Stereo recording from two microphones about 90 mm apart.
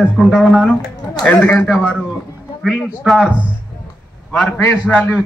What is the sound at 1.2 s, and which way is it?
Speech, 15° left (ahead or behind).